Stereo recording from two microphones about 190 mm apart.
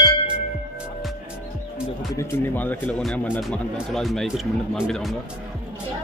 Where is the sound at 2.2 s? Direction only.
10° left (ahead or behind).